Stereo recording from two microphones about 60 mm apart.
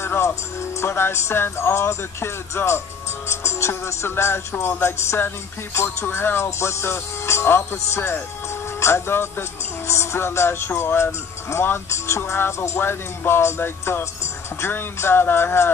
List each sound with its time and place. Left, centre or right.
0.0 s speech: left